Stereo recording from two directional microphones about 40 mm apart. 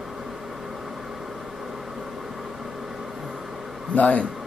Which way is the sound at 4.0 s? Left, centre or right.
Left.